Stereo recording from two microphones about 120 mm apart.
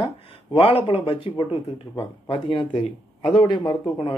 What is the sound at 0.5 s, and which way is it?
Speech, 50° left (ahead or behind).